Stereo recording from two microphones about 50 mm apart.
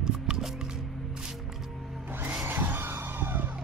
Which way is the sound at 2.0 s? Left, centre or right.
Right.